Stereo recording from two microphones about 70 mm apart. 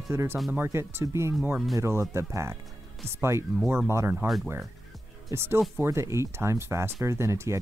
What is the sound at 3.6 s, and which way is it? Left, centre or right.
Speech, right.